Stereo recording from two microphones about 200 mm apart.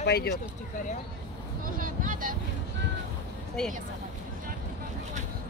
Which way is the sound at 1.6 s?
45° right (ahead or behind).